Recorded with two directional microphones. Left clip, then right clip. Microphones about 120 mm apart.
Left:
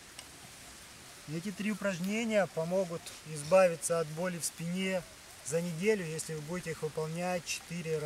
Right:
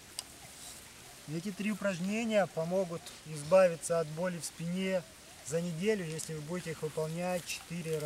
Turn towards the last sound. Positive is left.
turn(degrees=5)  # may be behind; listen again after turning